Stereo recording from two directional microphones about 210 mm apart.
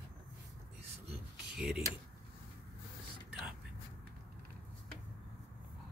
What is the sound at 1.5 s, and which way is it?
Speech, 5° right (ahead or behind).